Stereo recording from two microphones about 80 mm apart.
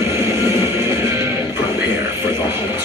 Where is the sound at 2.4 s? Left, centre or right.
Right.